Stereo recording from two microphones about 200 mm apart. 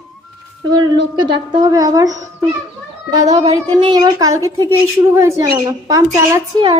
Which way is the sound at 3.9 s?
20° right (ahead or behind).